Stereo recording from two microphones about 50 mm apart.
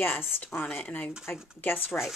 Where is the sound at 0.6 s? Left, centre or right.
Left.